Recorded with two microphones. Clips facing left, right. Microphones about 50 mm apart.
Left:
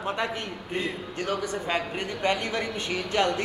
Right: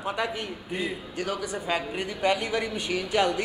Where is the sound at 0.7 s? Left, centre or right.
Centre.